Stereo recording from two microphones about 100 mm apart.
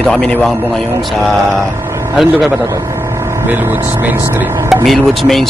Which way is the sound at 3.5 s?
20° right (ahead or behind).